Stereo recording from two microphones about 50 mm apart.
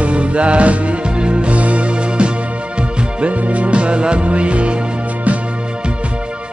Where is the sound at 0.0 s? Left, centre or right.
Right.